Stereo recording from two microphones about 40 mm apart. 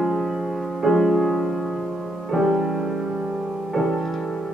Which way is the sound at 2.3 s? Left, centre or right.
Centre.